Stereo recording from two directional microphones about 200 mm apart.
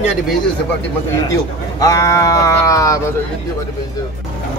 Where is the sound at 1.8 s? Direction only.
15° left (ahead or behind).